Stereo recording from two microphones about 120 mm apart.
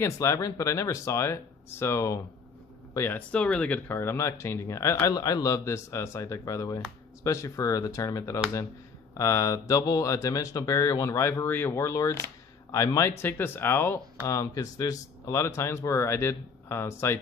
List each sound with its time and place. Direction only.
0.0 s speech: 25° left (ahead or behind)